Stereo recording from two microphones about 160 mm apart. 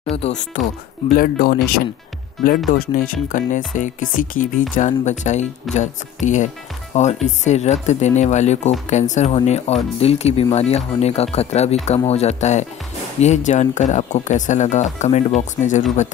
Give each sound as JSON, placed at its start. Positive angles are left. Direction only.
{"t": 0.1, "sound": "speech", "side_deg": 40}
{"t": 1.1, "sound": "speech", "side_deg": 65}